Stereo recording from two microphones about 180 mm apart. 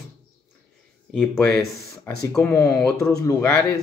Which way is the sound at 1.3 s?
10° left (ahead or behind).